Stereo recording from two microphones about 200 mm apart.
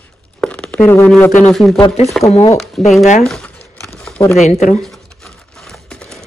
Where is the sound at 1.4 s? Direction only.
Centre (ahead or behind).